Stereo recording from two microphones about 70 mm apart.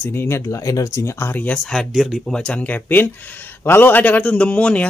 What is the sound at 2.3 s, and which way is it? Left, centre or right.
Speech, centre.